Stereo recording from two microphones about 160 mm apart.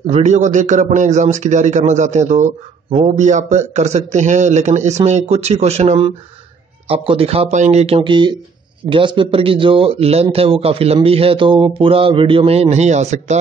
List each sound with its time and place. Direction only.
0.0 s speech: 45° right (ahead or behind)